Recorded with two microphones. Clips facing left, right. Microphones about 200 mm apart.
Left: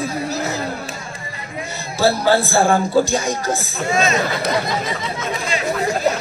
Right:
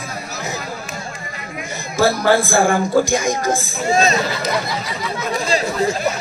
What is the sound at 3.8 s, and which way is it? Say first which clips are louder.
Speech: right 3 dB; 35° right (ahead or behind).